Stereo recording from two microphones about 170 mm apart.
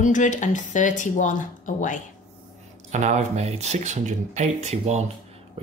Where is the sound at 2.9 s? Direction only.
45° right (ahead or behind).